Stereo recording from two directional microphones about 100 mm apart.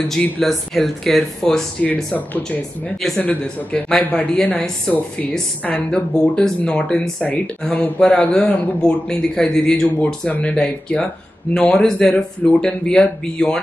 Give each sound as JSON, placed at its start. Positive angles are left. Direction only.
{"t": 0.1, "sound": "speech", "side_deg": 0}
{"t": 2.1, "sound": "speech", "side_deg": 15}